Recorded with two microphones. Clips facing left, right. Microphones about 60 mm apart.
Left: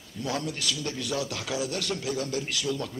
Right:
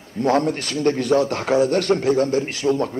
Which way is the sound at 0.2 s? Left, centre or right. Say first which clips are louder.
Right 12 dB; right.